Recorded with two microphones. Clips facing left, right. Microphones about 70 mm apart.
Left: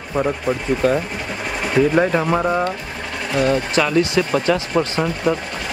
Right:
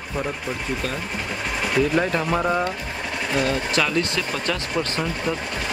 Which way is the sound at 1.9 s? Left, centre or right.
Centre.